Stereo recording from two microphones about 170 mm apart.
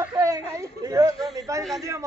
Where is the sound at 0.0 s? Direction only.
20° right (ahead or behind).